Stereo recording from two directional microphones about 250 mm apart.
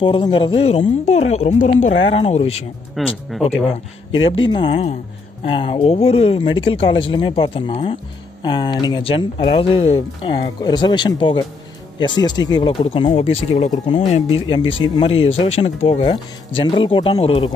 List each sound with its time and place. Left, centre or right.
0.0 s speech: centre
3.0 s speech: centre
4.5 s speech: centre